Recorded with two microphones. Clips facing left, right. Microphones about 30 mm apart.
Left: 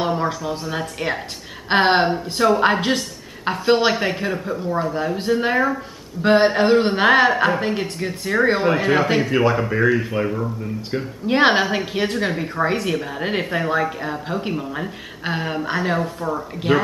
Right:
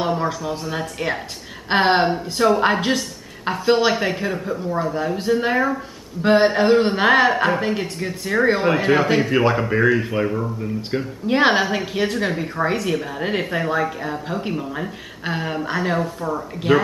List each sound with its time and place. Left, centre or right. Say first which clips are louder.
0.0 s a woman's voice: even; centre
11.2 s a woman's voice: left 1 dB; centre